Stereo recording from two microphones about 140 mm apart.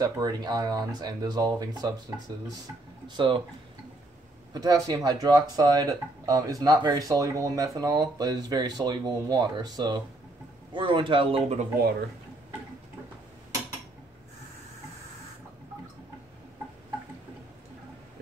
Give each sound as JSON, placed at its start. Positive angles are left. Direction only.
{"t": 0.0, "sound": "a man's voice", "side_deg": -30}
{"t": 4.6, "sound": "a man's voice", "side_deg": -25}